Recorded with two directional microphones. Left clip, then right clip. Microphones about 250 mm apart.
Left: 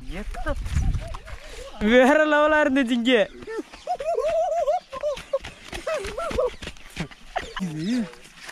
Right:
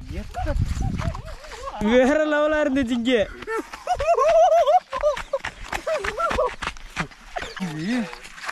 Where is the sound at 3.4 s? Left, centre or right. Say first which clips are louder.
Right 4 dB; right.